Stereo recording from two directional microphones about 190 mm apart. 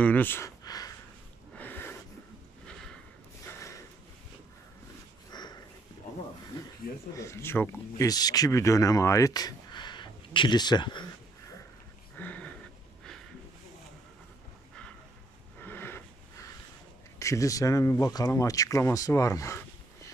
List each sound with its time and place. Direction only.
0.0 s a sound: 10° left (ahead or behind)
5.3 s sniff: 20° left (ahead or behind)
7.2 s speech: 15° left (ahead or behind)
12.2 s a sound: 10° left (ahead or behind)
15.6 s wheeze: 10° left (ahead or behind)
17.2 s speech: 15° left (ahead or behind)